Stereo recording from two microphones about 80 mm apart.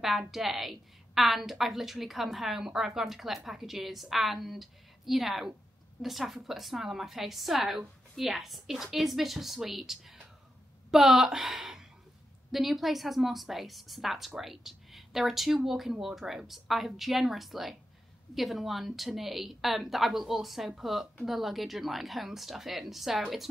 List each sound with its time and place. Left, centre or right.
0.0 s a woman's voice: centre